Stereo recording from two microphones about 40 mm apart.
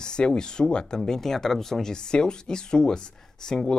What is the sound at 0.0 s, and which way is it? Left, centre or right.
Speech, centre.